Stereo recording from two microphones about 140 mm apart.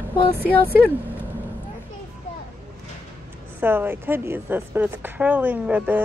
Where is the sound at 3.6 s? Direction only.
15° right (ahead or behind).